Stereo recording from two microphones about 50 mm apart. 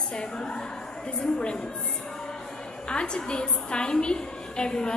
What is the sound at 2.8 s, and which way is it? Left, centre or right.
A woman's voice, left.